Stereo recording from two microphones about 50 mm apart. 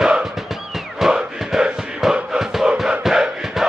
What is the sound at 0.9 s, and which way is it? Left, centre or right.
Music, centre.